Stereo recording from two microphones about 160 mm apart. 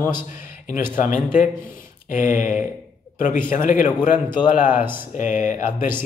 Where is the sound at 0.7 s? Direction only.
55° left (ahead or behind).